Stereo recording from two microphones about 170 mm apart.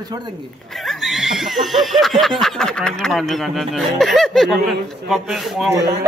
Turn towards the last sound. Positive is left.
turn(degrees=-20)  # may be behind; listen again after turning